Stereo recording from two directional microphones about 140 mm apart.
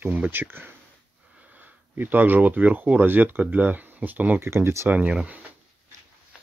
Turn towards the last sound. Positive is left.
turn(degrees=-10)  # may be behind; listen again after turning